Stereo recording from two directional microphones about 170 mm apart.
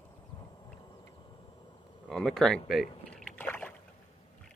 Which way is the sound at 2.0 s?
Centre (ahead or behind).